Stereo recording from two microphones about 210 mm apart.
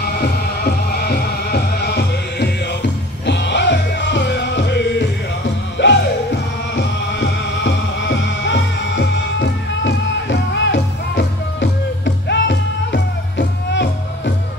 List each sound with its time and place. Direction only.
0.2 s music: 45° left (ahead or behind)